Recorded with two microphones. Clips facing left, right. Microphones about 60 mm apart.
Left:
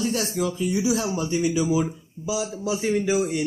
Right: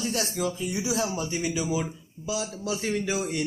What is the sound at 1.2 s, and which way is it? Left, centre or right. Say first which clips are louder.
Speech: left 6 dB; centre.